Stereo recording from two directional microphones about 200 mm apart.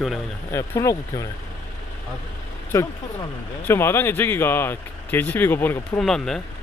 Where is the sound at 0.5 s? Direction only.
15° left (ahead or behind).